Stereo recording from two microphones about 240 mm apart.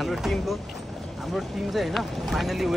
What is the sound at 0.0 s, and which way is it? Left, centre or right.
Speech, centre.